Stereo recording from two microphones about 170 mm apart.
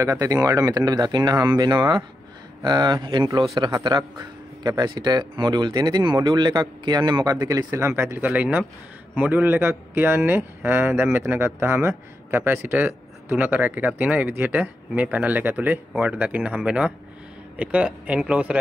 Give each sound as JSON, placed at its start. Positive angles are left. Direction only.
{"t": 0.0, "sound": "a man's voice", "side_deg": -20}